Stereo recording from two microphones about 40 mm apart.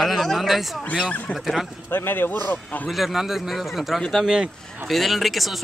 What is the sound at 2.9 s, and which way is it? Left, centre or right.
Speech, centre.